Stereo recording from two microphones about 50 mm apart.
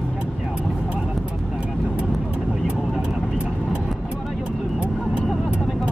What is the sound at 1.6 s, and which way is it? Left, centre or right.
Vehicle, right.